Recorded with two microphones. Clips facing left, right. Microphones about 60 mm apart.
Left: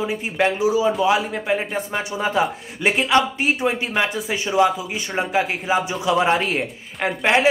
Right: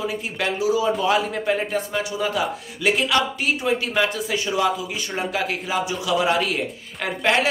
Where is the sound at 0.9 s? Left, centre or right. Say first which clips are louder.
Left 2 dB; centre.